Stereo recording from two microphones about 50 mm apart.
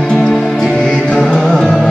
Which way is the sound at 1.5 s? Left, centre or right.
Centre.